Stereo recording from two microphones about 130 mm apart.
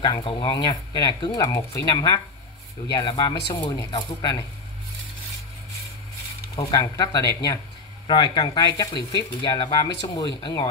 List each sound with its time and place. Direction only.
0.0 s speech: 35° left (ahead or behind)
1.4 s speech: 20° left (ahead or behind)
6.5 s speech: 30° left (ahead or behind)